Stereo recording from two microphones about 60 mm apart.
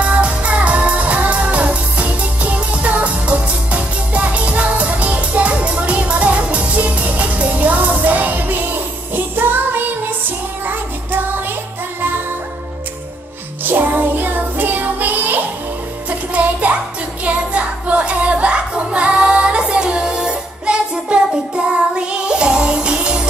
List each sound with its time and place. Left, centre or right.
0.0 s music: right
13.7 s music: right; by 23.2 s centre